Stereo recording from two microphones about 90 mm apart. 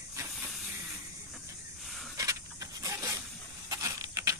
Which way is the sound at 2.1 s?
40° right (ahead or behind).